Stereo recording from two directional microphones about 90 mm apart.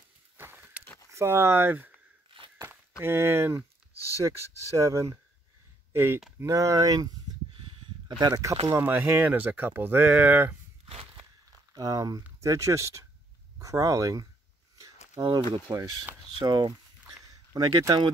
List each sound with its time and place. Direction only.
0.4 s a sound: 25° right (ahead or behind)
1.1 s speech: 30° right (ahead or behind)
4.7 s speech: 35° right (ahead or behind)
6.4 s speech: 35° right (ahead or behind)
8.2 s speech: 40° right (ahead or behind)
8.7 s speech: 20° right (ahead or behind)
10.9 s a sound: 90° right
11.7 s speech: 40° right (ahead or behind)
15.7 s speech: 30° right (ahead or behind)
16.3 s speech: 50° right (ahead or behind)
17.6 s speech: 40° right (ahead or behind)